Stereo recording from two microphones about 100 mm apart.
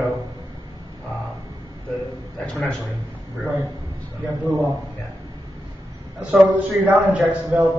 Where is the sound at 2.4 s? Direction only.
10° left (ahead or behind).